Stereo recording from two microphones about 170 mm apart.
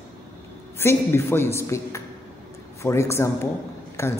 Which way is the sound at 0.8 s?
15° left (ahead or behind).